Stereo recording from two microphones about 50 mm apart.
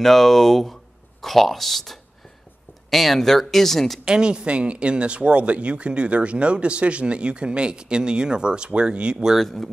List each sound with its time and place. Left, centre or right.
0.0 s speech: centre
4.0 s speech: centre
9.4 s speech: centre